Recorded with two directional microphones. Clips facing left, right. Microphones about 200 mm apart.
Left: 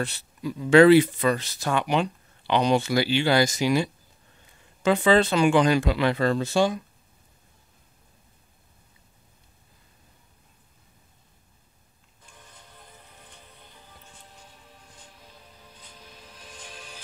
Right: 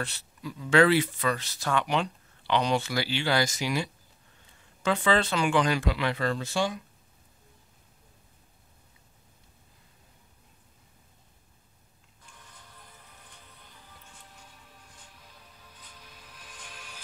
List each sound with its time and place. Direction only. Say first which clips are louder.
0.0 s speech: left 6 dB; 20° left (ahead or behind)
4.8 s speech: left 6 dB; 20° left (ahead or behind); by 6.8 s 35° left (ahead or behind)
15.8 s music: left 4 dB; 25° left (ahead or behind)